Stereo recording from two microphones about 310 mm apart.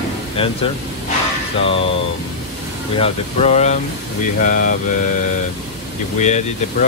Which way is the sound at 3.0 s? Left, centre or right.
Left.